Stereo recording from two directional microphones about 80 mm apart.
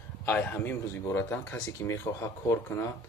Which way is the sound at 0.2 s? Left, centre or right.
Left.